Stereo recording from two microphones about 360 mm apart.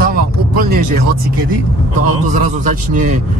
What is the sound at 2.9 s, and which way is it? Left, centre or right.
Speech, right.